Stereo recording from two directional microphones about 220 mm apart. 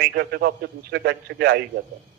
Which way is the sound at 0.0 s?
45° right (ahead or behind).